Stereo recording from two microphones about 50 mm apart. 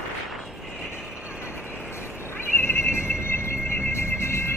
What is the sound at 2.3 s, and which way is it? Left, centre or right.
Neigh, left.